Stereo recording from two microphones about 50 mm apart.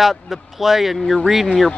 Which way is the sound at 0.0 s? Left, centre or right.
Centre.